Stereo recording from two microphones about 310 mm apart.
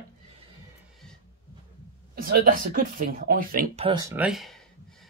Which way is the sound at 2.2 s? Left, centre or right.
Right.